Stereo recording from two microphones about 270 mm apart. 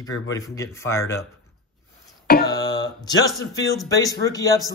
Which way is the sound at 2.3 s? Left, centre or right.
Left.